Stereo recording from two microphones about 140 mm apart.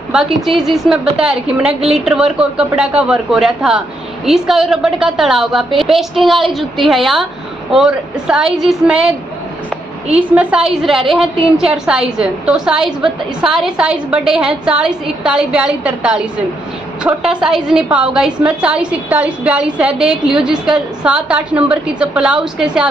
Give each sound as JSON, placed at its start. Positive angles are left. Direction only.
{"t": 0.5, "sound": "speech", "side_deg": -40}
{"t": 0.8, "sound": "a woman's voice", "side_deg": -5}
{"t": 10.1, "sound": "a woman's voice", "side_deg": -10}